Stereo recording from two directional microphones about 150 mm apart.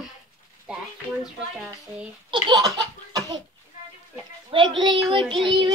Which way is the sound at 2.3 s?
30° right (ahead or behind).